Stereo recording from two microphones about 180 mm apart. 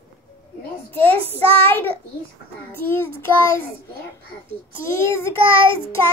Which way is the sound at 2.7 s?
10° left (ahead or behind).